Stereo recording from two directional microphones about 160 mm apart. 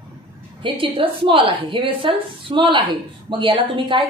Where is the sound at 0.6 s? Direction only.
35° right (ahead or behind).